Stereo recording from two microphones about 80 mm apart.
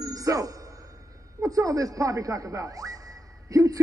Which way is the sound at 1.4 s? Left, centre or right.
Right.